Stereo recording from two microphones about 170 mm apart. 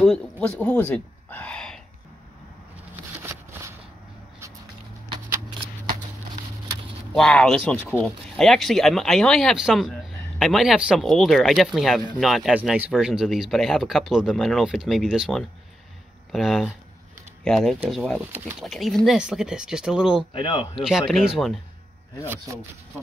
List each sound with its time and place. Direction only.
0.0 s speech: 5° left (ahead or behind)
3.2 s a sound: 15° right (ahead or behind)
7.1 s speech: 5° left (ahead or behind)
20.3 s speech: 30° left (ahead or behind)
21.1 s speech: centre (ahead or behind)